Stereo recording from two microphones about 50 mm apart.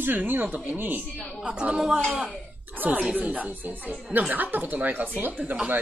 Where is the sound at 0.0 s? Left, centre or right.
Right.